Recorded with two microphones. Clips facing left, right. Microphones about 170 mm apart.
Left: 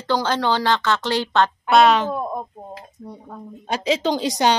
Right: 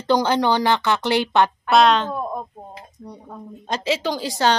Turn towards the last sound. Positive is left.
turn(degrees=20)  # may be behind; listen again after turning